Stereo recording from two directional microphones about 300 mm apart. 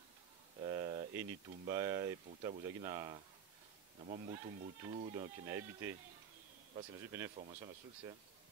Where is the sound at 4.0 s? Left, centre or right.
Right.